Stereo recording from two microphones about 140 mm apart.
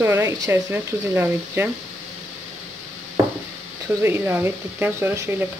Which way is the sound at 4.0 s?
15° right (ahead or behind).